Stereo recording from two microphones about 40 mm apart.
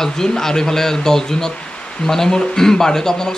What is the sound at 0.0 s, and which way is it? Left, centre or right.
Speech, centre.